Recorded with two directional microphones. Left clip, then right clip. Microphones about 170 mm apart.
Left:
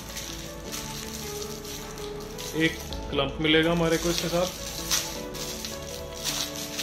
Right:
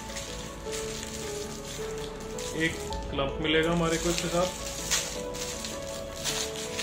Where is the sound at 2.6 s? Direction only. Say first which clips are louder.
Left 4 dB; 60° left (ahead or behind).